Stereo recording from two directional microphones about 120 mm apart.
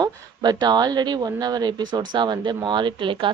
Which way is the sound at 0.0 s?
35° right (ahead or behind).